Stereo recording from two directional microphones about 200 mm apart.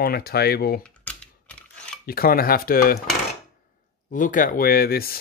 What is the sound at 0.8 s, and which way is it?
Computer keyboard, 5° left (ahead or behind).